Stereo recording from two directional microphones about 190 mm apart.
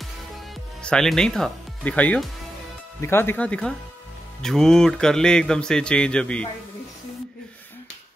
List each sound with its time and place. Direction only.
0.8 s speech: 5° left (ahead or behind)